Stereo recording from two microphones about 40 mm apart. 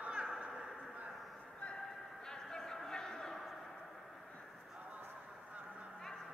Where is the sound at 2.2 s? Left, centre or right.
Centre.